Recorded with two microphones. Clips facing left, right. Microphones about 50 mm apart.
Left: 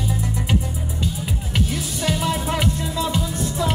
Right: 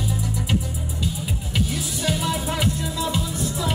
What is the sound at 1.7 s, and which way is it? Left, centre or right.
Music, left.